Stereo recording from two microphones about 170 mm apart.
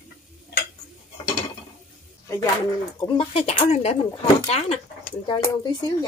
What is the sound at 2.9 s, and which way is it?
Speech, 30° left (ahead or behind).